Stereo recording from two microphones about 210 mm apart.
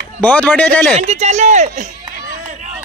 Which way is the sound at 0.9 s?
30° right (ahead or behind).